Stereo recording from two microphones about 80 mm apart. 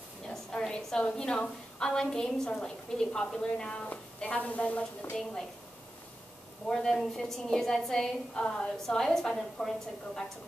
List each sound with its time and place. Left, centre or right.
0.3 s a woman's voice: centre
5.1 s a woman's voice: centre
6.7 s a woman's voice: centre